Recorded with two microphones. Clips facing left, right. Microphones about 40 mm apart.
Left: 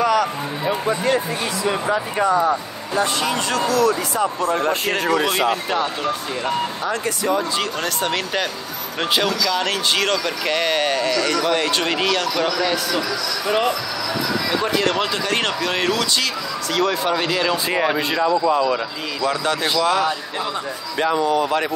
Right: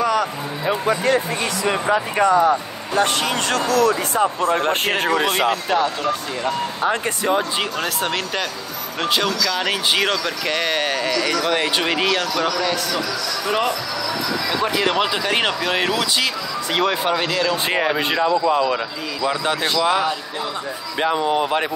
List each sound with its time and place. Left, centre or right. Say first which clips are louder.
0.0 s music: left 1 dB; centre
0.8 s speech: right 2 dB; right
1.9 s speech: right 3 dB; right
3.0 s speech: right 1 dB; right
5.7 s speech: right 2 dB; centre
6.8 s speech: right 2 dB; right
7.8 s speech: even; centre
9.7 s speech: right 1 dB; centre
10.1 s speech: left 1 dB; centre
14.5 s speech: right 1 dB; centre
16.7 s speech: even; right
17.1 s speech: even; centre
17.7 s speech: even; centre